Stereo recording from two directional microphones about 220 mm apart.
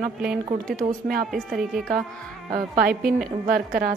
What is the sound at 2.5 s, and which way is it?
A woman's voice, 40° right (ahead or behind).